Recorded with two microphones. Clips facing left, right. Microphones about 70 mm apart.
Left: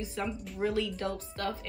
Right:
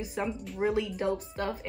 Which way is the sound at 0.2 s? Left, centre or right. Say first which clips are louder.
Right 2 dB; right.